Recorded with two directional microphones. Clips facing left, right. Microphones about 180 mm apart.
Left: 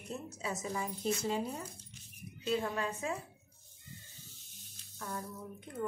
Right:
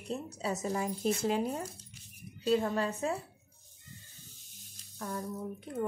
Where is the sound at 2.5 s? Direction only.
40° right (ahead or behind).